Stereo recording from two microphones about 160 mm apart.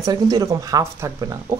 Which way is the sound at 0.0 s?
25° right (ahead or behind).